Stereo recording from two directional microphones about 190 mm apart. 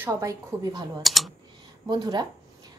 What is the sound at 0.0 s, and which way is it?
Speech, 15° right (ahead or behind).